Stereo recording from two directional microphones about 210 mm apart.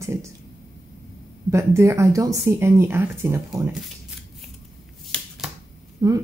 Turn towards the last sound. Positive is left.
turn(degrees=-15)  # may be behind; listen again after turning